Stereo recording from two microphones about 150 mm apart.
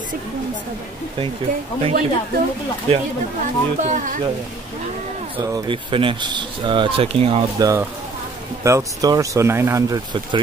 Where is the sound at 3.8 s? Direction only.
55° right (ahead or behind).